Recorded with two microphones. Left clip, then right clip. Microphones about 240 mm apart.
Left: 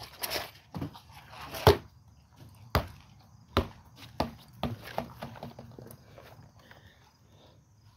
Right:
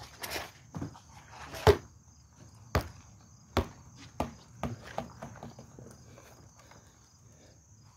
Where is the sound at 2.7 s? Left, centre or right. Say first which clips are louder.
Left 2 dB; left.